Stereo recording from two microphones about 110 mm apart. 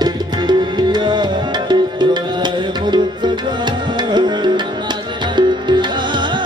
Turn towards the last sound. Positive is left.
turn(degrees=-45)  # may be behind; listen again after turning